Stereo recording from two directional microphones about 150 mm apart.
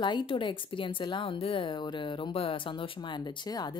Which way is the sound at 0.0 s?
30° left (ahead or behind).